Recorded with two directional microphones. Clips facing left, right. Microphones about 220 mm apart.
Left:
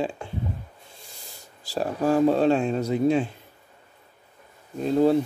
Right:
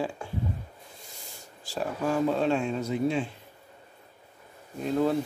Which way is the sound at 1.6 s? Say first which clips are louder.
Left 5 dB; 35° left (ahead or behind).